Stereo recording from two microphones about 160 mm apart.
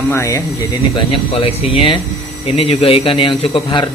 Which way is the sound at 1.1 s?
35° left (ahead or behind).